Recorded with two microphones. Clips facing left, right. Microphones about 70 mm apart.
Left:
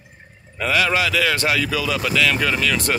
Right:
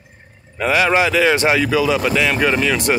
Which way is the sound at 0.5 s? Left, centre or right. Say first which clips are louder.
Right 4 dB; centre.